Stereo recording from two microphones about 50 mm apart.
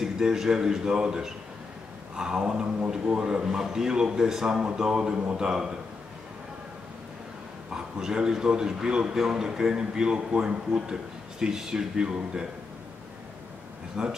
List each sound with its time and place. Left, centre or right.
0.0 s a man's voice: centre
7.7 s a man's voice: centre
14.0 s a man's voice: centre